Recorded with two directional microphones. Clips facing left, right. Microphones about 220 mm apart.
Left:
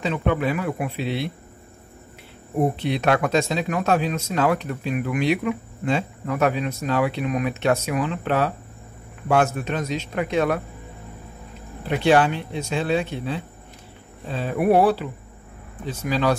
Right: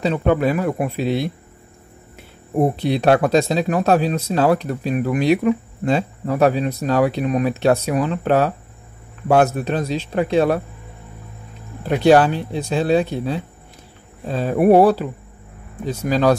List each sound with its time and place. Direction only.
0.0 s speech: 40° right (ahead or behind)
2.7 s speech: 35° right (ahead or behind)
11.9 s speech: 40° right (ahead or behind)